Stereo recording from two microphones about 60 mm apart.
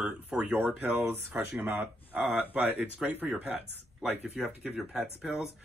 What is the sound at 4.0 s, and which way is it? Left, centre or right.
Speech, centre.